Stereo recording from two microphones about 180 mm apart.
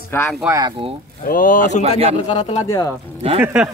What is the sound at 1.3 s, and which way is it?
Speech, 50° left (ahead or behind).